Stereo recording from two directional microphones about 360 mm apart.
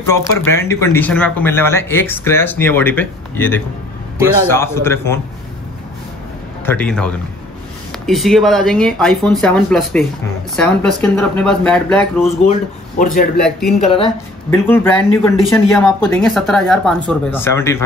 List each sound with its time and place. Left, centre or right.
0.1 s a man's voice: centre
6.6 s speech: centre
13.0 s speech: left
13.4 s speech: centre
13.7 s a man's voice: centre